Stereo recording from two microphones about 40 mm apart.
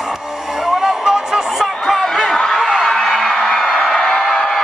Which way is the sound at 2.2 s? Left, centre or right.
Centre.